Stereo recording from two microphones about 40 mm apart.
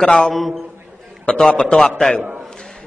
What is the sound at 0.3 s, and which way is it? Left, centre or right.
Speech, centre.